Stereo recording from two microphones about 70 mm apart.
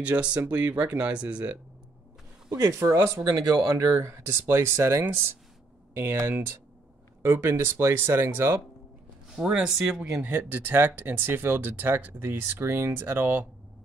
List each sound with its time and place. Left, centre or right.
0.0 s speech: centre
2.5 s speech: right
3.2 s speech: right
9.3 s speech: centre
10.2 s speech: right